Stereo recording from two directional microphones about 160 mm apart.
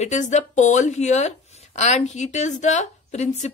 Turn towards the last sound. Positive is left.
turn(degrees=45)  # may be behind; listen again after turning